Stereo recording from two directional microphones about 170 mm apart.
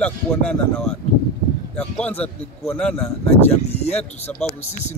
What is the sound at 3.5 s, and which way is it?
Speech, 40° left (ahead or behind).